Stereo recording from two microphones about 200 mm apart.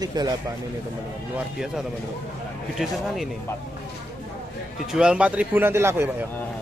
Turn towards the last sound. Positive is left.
turn(degrees=-15)  # may be behind; listen again after turning